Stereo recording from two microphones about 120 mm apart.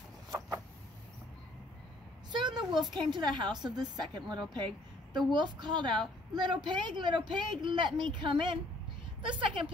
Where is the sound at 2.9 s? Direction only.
40° right (ahead or behind).